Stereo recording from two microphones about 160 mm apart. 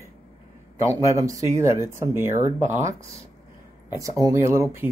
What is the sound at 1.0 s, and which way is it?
Speech, 20° right (ahead or behind).